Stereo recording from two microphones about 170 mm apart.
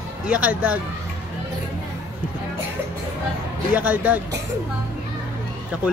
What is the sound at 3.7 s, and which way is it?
Speech, 10° right (ahead or behind).